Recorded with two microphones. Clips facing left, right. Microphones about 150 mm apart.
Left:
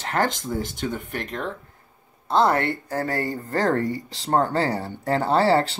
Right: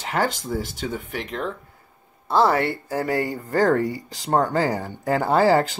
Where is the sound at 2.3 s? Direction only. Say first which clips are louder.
Right 1 dB; 5° right (ahead or behind).